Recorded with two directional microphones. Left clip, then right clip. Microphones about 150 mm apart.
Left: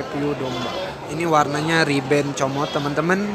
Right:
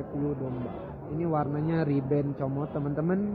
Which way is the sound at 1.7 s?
5° left (ahead or behind).